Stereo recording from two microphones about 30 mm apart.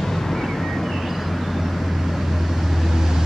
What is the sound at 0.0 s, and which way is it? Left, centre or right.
Vehicle, centre.